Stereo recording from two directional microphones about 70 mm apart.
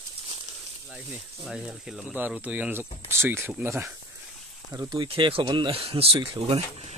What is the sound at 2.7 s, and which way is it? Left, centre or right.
Speech, right.